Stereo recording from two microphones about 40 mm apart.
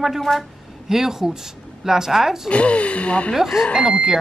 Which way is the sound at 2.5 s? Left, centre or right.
Left.